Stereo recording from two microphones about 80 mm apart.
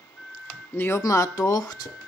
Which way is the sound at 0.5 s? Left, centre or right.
Left.